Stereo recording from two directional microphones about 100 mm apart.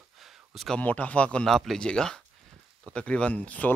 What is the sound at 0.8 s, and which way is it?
Speech, 15° left (ahead or behind).